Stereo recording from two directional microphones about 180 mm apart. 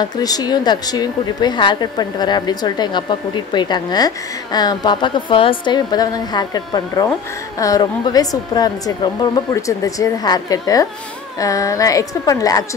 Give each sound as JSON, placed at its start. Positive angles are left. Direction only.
{"t": 0.0, "sound": "a woman's voice", "side_deg": 20}